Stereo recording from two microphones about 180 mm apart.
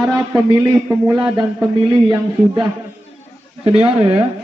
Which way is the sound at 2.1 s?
20° right (ahead or behind).